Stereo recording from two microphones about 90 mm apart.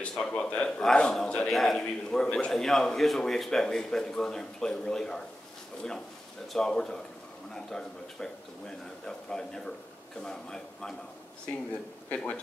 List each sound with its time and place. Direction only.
0.0 s a man's voice: 10° left (ahead or behind)
6.5 s a man's voice: 5° left (ahead or behind)
12.1 s a man's voice: 15° left (ahead or behind)